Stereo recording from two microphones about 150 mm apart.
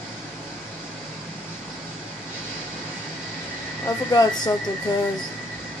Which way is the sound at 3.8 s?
25° left (ahead or behind).